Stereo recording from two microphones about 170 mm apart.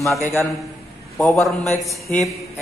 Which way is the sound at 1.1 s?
5° left (ahead or behind).